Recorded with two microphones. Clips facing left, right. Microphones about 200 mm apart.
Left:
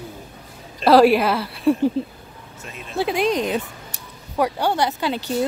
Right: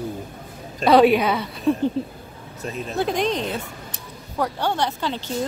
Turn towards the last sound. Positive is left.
turn(degrees=10)  # may be behind; listen again after turning